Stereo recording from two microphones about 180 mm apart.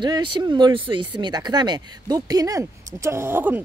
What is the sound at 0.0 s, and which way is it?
A woman's voice, 25° right (ahead or behind).